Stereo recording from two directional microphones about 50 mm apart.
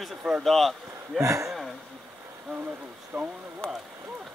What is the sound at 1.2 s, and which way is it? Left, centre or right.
Speech, right.